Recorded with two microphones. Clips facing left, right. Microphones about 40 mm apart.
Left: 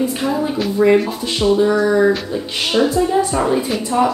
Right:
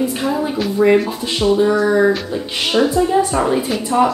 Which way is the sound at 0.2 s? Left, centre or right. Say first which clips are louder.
Even; centre.